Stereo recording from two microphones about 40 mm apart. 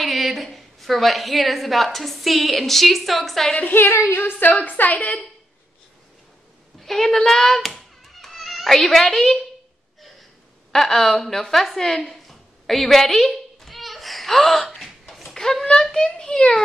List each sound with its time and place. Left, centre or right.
0.0 s a woman's voice: centre
3.7 s a woman's voice: left
6.8 s hands: centre
8.7 s a woman's voice: centre
10.7 s a woman's voice: centre
11.7 s a sound: centre